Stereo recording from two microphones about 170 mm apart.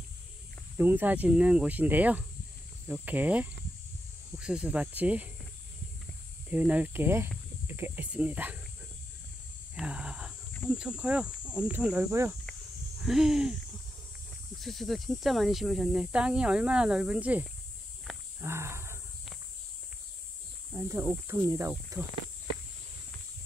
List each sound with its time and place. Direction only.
0.7 s speech: 10° right (ahead or behind)
6.5 s speech: 10° right (ahead or behind)
9.8 s a sound: 5° right (ahead or behind)
10.7 s speech: 5° right (ahead or behind)
13.0 s speech: 5° right (ahead or behind)
14.6 s speech: centre (ahead or behind)
18.4 s wild animals: 15° right (ahead or behind)
20.7 s speech: 15° right (ahead or behind)